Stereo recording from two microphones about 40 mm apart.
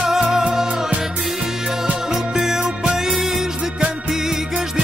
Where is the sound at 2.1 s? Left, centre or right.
Centre.